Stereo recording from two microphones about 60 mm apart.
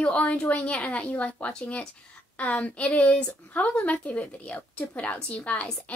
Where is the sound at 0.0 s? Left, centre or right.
Left.